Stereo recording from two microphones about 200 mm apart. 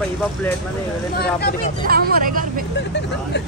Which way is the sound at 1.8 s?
45° right (ahead or behind).